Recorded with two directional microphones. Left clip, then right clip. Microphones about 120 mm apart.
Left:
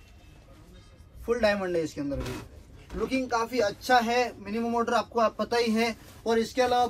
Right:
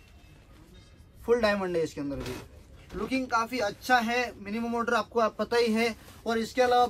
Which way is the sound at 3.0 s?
Centre (ahead or behind).